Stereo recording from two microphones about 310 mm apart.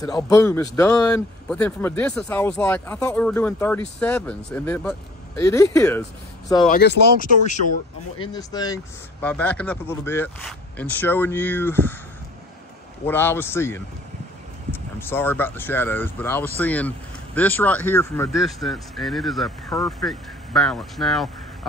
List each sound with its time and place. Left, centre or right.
0.0 s speech: centre
6.7 s speech: left
8.2 s speech: centre
13.0 s speech: centre